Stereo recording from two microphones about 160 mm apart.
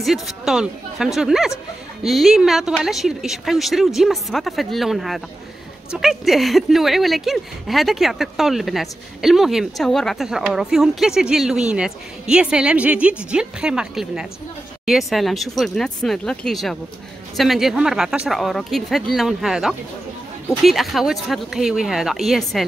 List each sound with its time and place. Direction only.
0.0 s speech: centre (ahead or behind)